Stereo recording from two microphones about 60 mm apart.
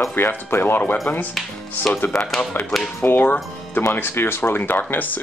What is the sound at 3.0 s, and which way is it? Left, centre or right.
Speech, left.